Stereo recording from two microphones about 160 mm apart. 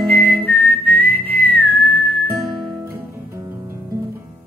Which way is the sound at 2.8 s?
15° right (ahead or behind).